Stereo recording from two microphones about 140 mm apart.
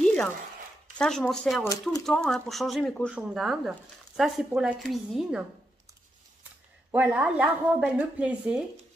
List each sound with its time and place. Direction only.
0.0 s a sound: 10° left (ahead or behind)
0.9 s a woman's voice: 5° left (ahead or behind)
1.6 s speech: 25° left (ahead or behind)
2.0 s a woman's voice: 5° left (ahead or behind)
6.9 s speech: 10° right (ahead or behind)